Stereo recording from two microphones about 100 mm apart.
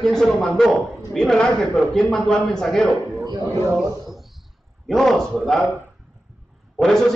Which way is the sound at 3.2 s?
40° right (ahead or behind).